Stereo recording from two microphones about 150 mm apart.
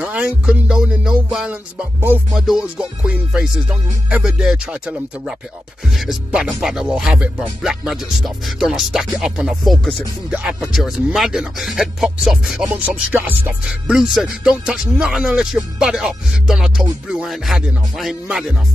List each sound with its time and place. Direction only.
0.0 s music: 5° right (ahead or behind)
2.3 s speech: 5° right (ahead or behind)